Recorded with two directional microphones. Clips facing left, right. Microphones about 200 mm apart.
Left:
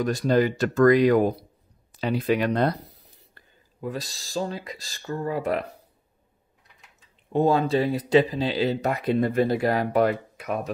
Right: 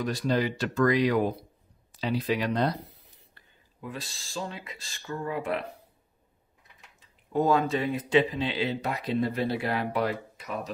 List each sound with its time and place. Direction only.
0.0 s speech: 45° left (ahead or behind)
3.3 s speech: 40° left (ahead or behind)
7.3 s speech: 30° left (ahead or behind); by 10.7 s 60° left (ahead or behind)